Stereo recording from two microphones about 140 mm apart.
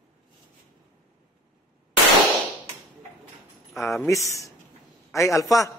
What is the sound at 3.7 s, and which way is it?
Speech, centre (ahead or behind).